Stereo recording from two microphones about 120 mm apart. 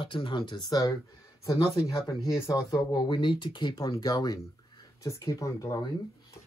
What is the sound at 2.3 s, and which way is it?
Speech, 20° left (ahead or behind).